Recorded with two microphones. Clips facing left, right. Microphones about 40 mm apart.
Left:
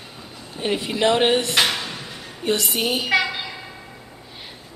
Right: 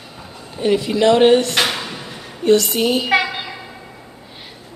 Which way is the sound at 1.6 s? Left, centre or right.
Centre.